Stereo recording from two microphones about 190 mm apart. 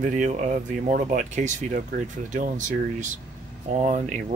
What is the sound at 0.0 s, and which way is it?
Speech, 40° right (ahead or behind).